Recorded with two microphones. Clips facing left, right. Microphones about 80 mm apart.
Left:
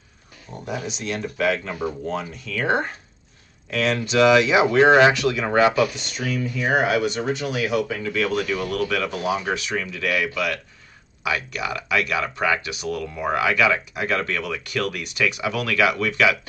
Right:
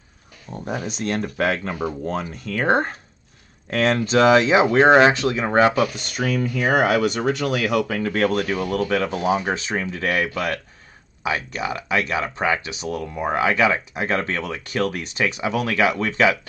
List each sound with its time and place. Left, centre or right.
0.7 s speech: right